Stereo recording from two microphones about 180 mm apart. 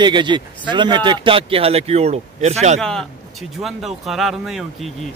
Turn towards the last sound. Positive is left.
turn(degrees=0)  # may be behind; listen again after turning